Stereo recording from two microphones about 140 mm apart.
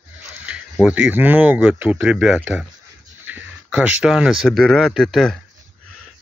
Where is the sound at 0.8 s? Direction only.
10° right (ahead or behind).